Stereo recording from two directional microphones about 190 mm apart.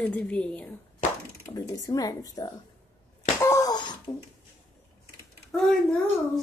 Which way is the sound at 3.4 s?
15° left (ahead or behind).